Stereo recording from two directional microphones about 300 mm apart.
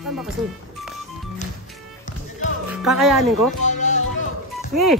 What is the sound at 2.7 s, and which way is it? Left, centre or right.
Speech, centre.